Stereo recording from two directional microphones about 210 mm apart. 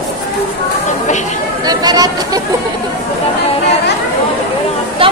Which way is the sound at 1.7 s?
20° right (ahead or behind).